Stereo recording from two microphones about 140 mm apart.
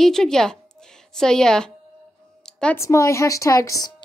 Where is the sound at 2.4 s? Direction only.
5° left (ahead or behind).